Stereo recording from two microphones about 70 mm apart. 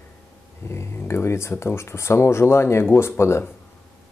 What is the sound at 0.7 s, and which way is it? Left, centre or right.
Speech, left.